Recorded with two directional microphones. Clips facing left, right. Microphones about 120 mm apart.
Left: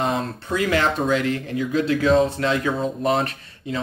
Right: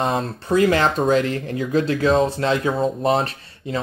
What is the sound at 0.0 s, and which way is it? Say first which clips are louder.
Speech: right 1 dB; 40° right (ahead or behind).